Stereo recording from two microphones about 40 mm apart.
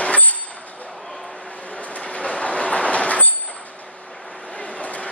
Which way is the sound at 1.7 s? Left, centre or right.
Left.